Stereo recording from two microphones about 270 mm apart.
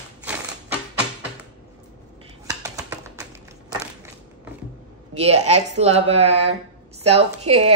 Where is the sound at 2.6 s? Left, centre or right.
Centre.